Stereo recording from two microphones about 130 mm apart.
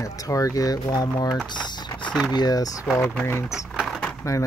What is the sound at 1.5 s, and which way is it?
Typing, 35° left (ahead or behind).